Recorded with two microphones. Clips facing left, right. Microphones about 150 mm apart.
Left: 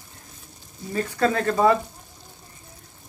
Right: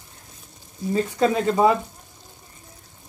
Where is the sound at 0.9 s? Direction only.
20° right (ahead or behind).